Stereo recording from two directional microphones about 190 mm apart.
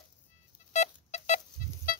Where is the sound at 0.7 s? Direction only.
40° left (ahead or behind).